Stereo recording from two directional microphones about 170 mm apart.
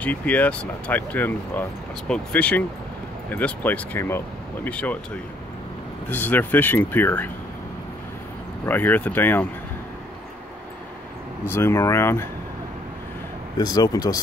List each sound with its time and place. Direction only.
0.0 s speech: 10° left (ahead or behind)
6.0 s speech: 10° left (ahead or behind)
8.6 s speech: 10° left (ahead or behind)
11.4 s speech: 15° left (ahead or behind)
13.6 s speech: 25° left (ahead or behind)